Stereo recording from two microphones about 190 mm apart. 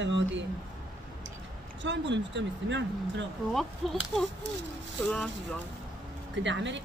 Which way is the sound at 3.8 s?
Centre (ahead or behind).